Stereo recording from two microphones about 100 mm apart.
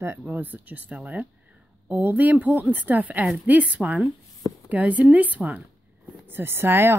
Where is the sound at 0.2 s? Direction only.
20° right (ahead or behind).